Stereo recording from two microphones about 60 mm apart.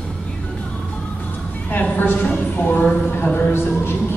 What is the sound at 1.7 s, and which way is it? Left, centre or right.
A woman's voice, left.